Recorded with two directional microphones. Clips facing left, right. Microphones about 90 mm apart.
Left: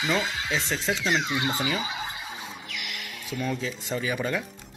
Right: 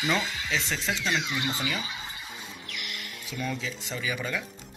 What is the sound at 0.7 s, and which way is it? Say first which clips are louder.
Speech: left 3 dB; 5° left (ahead or behind).